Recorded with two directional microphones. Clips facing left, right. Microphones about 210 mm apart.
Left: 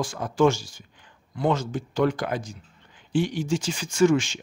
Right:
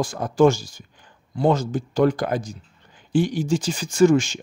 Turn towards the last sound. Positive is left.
turn(degrees=-40)  # may be behind; listen again after turning